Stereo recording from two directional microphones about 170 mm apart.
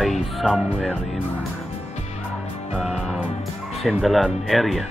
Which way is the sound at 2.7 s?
Centre (ahead or behind).